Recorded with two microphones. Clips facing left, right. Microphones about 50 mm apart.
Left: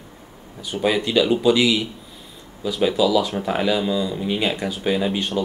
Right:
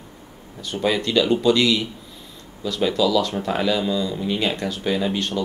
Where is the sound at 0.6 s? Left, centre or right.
Centre.